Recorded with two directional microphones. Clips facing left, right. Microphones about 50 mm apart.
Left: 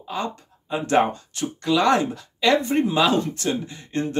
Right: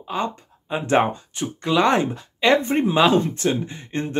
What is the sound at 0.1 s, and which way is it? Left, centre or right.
Speech, right.